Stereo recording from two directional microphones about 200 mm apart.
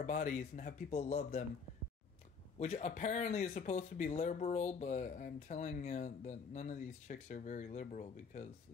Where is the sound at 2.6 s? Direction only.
35° left (ahead or behind).